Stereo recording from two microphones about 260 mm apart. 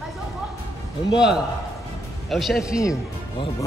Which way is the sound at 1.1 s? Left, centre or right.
Centre.